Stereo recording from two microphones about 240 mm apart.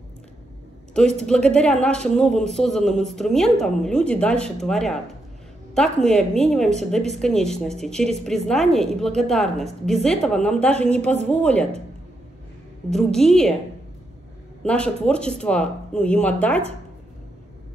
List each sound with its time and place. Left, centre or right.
0.9 s speech: centre
12.9 s speech: centre
14.6 s speech: centre